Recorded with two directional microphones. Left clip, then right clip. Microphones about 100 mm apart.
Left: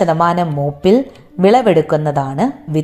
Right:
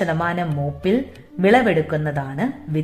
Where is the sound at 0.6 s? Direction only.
45° left (ahead or behind).